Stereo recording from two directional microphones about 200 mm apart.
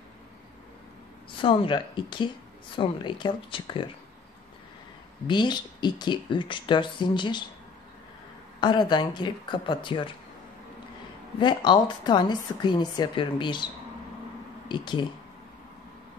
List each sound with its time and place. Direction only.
1.4 s a woman's voice: 25° left (ahead or behind)
5.2 s a woman's voice: 20° left (ahead or behind)
8.5 s a woman's voice: 20° left (ahead or behind)
11.3 s a woman's voice: 20° left (ahead or behind)
14.7 s a woman's voice: 20° left (ahead or behind)